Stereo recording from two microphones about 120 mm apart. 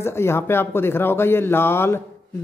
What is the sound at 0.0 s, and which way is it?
Speech, 20° left (ahead or behind).